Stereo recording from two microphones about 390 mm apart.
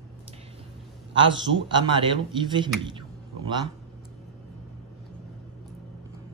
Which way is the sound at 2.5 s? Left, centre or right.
Centre.